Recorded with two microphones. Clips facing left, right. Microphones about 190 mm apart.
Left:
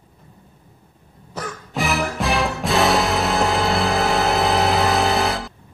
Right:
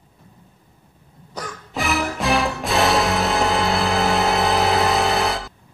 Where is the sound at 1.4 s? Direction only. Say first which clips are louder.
Left 2 dB; centre (ahead or behind).